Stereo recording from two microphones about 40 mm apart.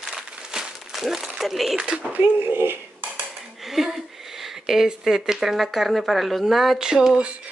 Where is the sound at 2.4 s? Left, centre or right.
Right.